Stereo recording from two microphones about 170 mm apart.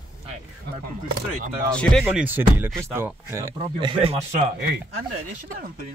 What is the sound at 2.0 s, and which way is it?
Speech, 10° right (ahead or behind).